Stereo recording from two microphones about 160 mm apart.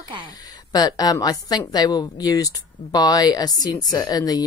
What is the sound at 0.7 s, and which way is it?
Speech, 25° left (ahead or behind).